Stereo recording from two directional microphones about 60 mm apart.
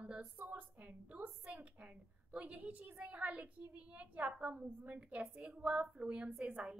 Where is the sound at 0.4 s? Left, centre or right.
Right.